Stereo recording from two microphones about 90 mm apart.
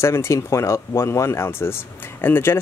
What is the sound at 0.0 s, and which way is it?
Speech, 30° left (ahead or behind).